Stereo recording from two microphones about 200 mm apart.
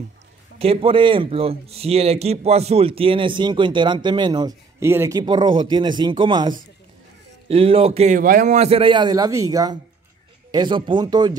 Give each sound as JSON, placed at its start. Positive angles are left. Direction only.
{"t": 0.6, "sound": "speech", "side_deg": -30}